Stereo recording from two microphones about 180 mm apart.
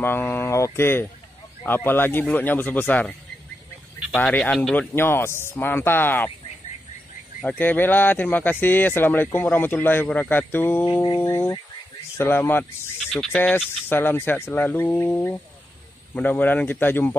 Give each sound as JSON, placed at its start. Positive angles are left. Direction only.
{"t": 0.0, "sound": "speech", "side_deg": 10}
{"t": 7.4, "sound": "speech", "side_deg": 10}